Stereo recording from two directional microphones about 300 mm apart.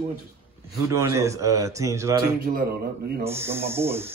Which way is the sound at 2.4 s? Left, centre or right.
Right.